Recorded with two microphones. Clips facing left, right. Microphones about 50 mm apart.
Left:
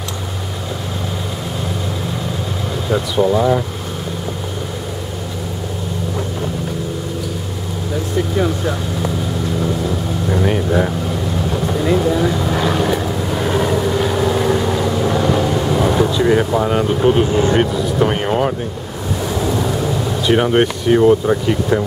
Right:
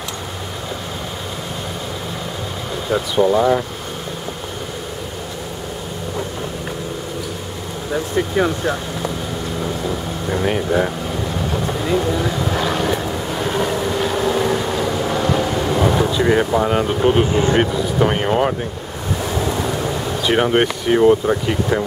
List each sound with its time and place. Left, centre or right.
2.9 s speech: centre
8.5 s speech: centre
9.6 s vehicle: centre
19.2 s a sound: centre